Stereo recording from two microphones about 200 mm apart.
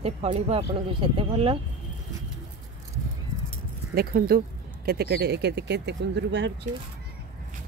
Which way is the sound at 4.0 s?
50° right (ahead or behind).